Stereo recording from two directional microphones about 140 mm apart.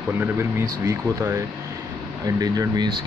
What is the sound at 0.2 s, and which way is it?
Speech, 20° right (ahead or behind).